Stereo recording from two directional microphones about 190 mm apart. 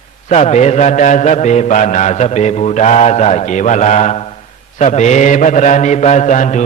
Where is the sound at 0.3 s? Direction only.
35° left (ahead or behind).